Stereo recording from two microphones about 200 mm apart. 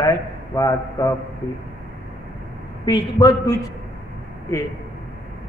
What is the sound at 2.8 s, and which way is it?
Speech, 20° left (ahead or behind).